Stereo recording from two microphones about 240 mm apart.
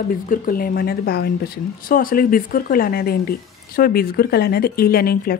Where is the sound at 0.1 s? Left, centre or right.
Left.